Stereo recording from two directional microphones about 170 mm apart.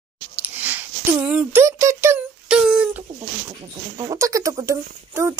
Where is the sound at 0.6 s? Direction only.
10° right (ahead or behind).